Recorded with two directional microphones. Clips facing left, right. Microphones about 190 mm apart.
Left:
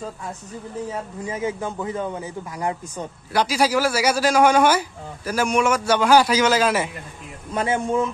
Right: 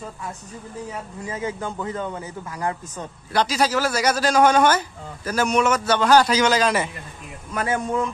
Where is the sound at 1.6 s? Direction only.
10° left (ahead or behind).